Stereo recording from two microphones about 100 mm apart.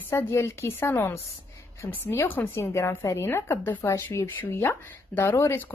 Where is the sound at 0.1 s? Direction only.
25° left (ahead or behind).